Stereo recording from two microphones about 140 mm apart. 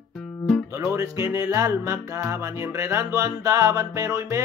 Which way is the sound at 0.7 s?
20° right (ahead or behind).